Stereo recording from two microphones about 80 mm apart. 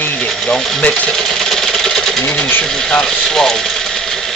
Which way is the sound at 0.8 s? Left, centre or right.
Centre.